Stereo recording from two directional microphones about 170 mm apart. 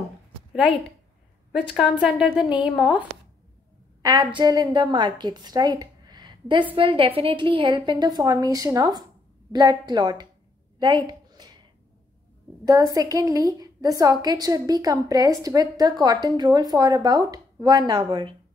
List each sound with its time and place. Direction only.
1.8 s a woman's voice: 5° right (ahead or behind)
4.0 s a woman's voice: 20° right (ahead or behind)
10.8 s a sound: 25° right (ahead or behind)
12.6 s a woman's voice: 20° right (ahead or behind)